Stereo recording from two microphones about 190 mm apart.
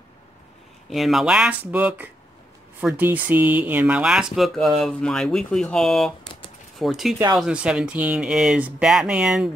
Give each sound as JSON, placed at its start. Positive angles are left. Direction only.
{"t": 0.8, "sound": "speech", "side_deg": 0}